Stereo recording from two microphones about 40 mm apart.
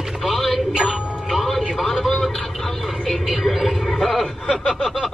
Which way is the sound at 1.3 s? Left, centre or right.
Centre.